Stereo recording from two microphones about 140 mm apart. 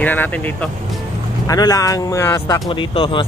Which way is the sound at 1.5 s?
25° left (ahead or behind).